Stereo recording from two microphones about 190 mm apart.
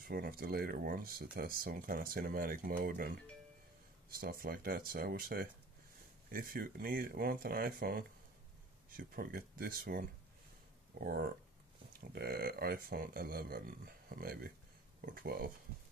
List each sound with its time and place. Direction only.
0.1 s speech: 50° right (ahead or behind)
4.1 s speech: 50° right (ahead or behind)